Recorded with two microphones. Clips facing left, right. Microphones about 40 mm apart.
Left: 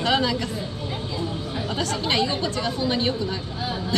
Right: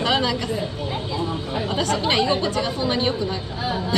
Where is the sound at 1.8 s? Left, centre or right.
Centre.